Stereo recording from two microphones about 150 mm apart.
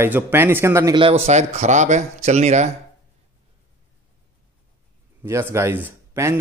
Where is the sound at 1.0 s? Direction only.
45° right (ahead or behind).